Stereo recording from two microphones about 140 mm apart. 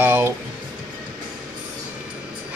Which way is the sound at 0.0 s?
15° right (ahead or behind).